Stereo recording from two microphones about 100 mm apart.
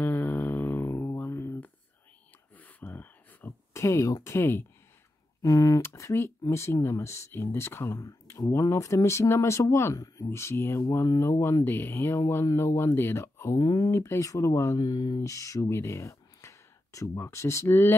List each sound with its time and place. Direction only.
0.0 s a sound: 20° left (ahead or behind)
5.4 s speech: 35° left (ahead or behind)
13.6 s speech: 40° left (ahead or behind)
13.9 s speech: 25° left (ahead or behind)